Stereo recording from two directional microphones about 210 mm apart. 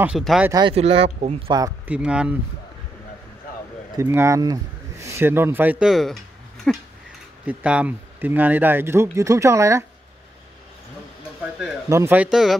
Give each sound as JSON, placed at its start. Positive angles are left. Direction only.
{"t": 0.0, "sound": "speech", "side_deg": 0}
{"t": 0.5, "sound": "speech", "side_deg": -20}
{"t": 1.9, "sound": "speech", "side_deg": -5}
{"t": 4.0, "sound": "speech", "side_deg": -10}
{"t": 11.9, "sound": "speech", "side_deg": -10}